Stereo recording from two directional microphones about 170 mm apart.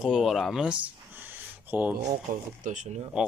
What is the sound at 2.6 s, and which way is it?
Speech, 45° right (ahead or behind).